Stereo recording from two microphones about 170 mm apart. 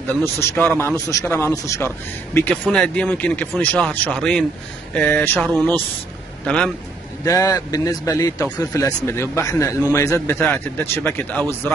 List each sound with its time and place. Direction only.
0.0 s speech: 15° left (ahead or behind)
7.2 s speech: 20° left (ahead or behind)